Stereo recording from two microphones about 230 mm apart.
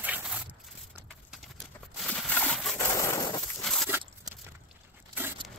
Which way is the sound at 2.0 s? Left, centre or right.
Centre.